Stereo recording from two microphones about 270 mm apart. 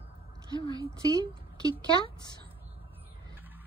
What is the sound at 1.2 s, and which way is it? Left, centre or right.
Speech, centre.